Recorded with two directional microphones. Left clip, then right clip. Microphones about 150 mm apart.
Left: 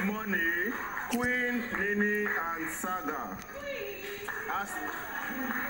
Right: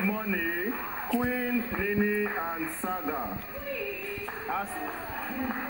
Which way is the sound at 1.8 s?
45° left (ahead or behind).